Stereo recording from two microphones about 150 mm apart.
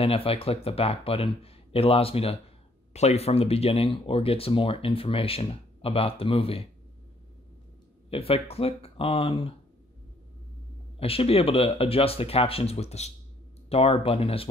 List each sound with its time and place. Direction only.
0.0 s speech: 40° left (ahead or behind)
8.1 s speech: 40° left (ahead or behind)
11.0 s speech: 40° left (ahead or behind)